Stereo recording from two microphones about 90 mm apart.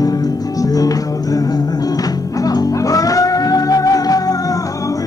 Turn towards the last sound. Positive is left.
turn(degrees=45)  # may be behind; listen again after turning